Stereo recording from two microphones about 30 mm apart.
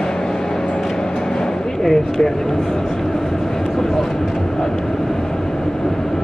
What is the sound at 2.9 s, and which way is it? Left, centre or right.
Speech, centre.